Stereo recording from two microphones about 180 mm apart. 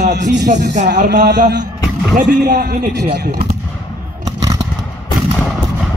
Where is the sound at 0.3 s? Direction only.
65° right (ahead or behind).